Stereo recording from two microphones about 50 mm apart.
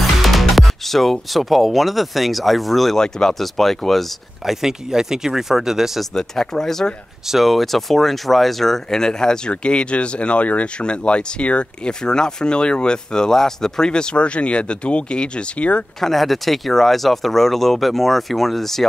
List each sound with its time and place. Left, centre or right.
0.0 s speech: centre
4.5 s speech: centre
6.1 s speech: centre
16.0 s speech: centre